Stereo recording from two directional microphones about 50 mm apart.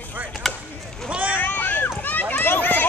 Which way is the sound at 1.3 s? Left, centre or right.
Left.